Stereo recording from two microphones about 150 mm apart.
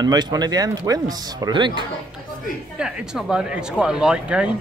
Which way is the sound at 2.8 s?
5° right (ahead or behind).